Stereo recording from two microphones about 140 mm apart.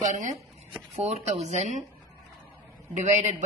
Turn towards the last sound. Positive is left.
turn(degrees=-60)  # may be behind; listen again after turning